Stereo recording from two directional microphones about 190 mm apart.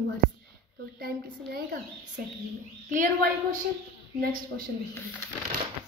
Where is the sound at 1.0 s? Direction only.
55° right (ahead or behind).